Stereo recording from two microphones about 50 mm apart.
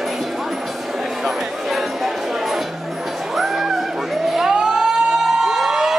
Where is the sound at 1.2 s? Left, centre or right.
Centre.